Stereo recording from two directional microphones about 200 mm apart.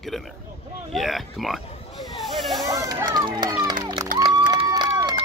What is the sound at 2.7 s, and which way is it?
Run, 15° right (ahead or behind).